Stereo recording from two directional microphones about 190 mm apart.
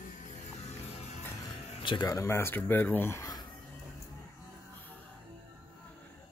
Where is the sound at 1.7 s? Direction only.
25° left (ahead or behind).